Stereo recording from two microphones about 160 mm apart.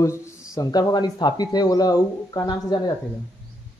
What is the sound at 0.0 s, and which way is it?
Speech, 20° left (ahead or behind).